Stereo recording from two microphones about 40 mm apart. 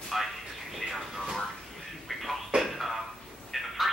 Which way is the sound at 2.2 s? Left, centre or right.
Centre.